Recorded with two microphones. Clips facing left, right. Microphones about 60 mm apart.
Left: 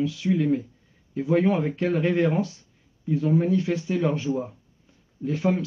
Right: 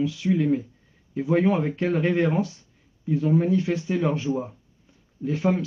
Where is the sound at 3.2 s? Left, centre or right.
Centre.